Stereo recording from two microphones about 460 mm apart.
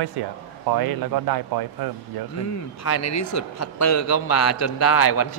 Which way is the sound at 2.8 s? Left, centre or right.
Left.